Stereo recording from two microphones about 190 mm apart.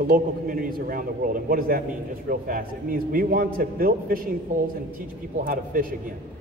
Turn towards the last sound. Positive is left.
turn(degrees=-45)  # may be behind; listen again after turning